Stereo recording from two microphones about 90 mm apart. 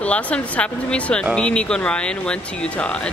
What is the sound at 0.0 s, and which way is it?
Speech, 15° left (ahead or behind).